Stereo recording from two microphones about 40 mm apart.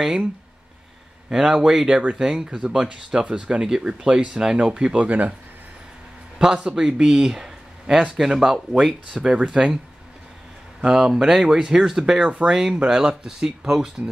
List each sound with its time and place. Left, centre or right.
0.0 s speech: centre
1.3 s speech: centre
4.6 s speech: right
6.3 s a man's voice: right
7.1 s speech: centre
10.8 s speech: centre